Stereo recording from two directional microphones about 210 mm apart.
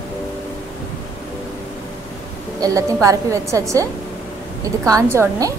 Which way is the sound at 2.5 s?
15° right (ahead or behind).